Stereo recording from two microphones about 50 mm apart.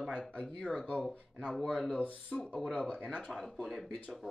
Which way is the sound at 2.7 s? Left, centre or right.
Left.